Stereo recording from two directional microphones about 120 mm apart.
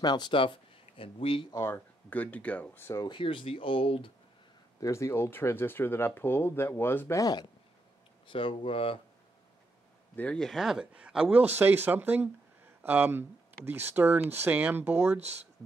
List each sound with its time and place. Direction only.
0.0 s speech: 40° left (ahead or behind)
1.5 s speech: 20° left (ahead or behind)
3.0 s speech: 45° left (ahead or behind)
4.7 s speech: 25° left (ahead or behind)
8.3 s speech: 45° left (ahead or behind)
10.1 s speech: 10° left (ahead or behind); by 15.1 s 15° right (ahead or behind)